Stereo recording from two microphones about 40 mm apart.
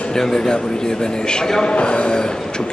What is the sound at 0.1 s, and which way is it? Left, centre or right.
A man's voice, centre.